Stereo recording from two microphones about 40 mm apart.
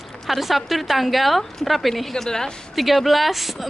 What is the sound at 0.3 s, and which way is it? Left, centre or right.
A woman's voice, centre.